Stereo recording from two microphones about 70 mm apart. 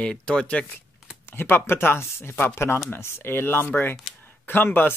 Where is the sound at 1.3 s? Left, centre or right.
Left.